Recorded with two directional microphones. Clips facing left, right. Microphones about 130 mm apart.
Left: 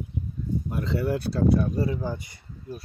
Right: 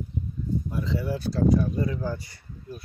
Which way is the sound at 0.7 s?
65° left (ahead or behind).